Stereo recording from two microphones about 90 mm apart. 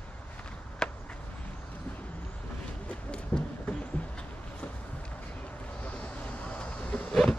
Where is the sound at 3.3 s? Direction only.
20° left (ahead or behind).